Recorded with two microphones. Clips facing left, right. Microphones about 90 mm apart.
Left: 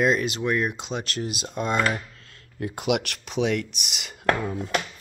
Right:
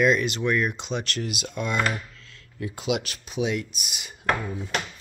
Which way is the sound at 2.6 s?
55° left (ahead or behind).